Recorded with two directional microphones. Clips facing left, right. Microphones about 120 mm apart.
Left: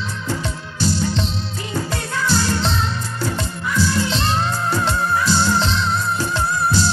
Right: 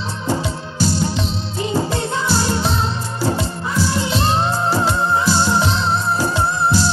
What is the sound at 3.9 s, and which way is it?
Music, 20° right (ahead or behind).